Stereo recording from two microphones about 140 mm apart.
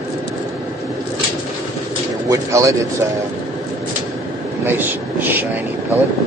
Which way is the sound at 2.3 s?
20° right (ahead or behind).